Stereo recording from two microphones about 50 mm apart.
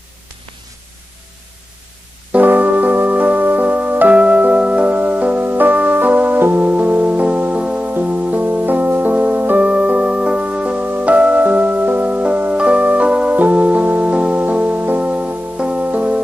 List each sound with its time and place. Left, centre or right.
2.3 s music: right
12.5 s organ: right
13.4 s music: right